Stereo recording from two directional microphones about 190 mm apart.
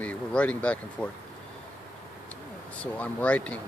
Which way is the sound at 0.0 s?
5° left (ahead or behind).